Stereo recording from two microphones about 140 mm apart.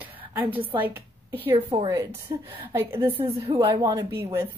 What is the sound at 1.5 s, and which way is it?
Speech, 40° right (ahead or behind).